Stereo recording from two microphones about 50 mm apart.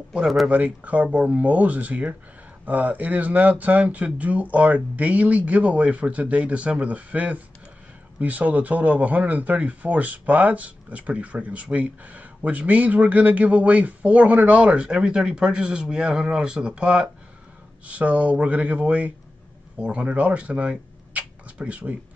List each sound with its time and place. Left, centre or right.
0.2 s speech: centre
0.5 s speech: right